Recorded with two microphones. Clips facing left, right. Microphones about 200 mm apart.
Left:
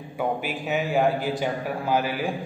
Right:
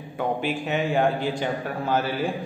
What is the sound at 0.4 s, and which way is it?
A man's voice, 5° left (ahead or behind).